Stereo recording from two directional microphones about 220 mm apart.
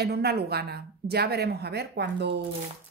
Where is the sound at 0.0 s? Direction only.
45° right (ahead or behind).